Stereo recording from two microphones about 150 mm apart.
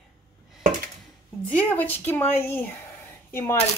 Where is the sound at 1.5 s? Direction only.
10° left (ahead or behind).